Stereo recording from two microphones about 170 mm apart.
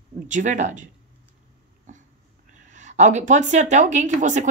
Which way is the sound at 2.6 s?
45° right (ahead or behind).